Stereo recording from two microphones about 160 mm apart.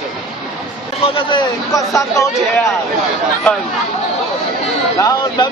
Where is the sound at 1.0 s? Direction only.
30° left (ahead or behind).